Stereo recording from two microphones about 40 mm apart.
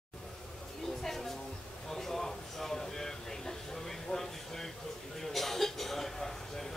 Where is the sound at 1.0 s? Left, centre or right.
Centre.